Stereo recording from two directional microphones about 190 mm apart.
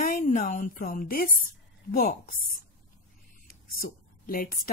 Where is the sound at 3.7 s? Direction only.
45° left (ahead or behind).